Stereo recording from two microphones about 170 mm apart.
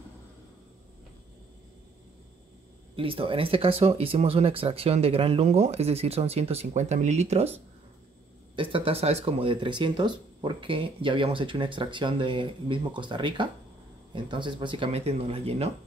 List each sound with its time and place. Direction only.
3.0 s speech: 30° right (ahead or behind)
8.5 s speech: 35° right (ahead or behind)